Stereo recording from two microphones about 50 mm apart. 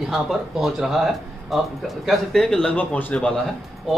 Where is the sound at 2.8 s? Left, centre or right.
Left.